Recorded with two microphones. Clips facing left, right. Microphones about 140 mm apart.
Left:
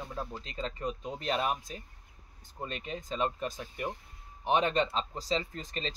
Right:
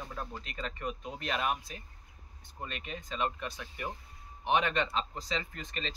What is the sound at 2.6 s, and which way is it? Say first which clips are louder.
Speech: left 3 dB; 30° left (ahead or behind).